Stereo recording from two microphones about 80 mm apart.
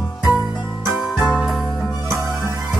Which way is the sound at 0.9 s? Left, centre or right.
Centre.